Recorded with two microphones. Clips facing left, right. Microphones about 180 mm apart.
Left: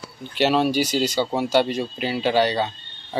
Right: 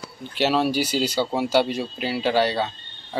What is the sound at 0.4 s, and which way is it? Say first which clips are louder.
Speech: left 2 dB; centre (ahead or behind).